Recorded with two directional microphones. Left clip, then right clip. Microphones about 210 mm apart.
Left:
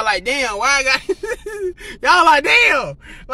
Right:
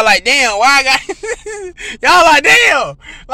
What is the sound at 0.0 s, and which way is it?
Speech, 25° right (ahead or behind).